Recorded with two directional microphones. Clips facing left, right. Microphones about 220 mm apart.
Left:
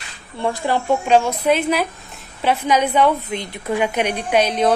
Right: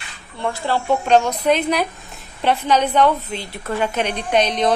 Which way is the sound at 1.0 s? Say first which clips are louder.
Right 1 dB; 5° left (ahead or behind).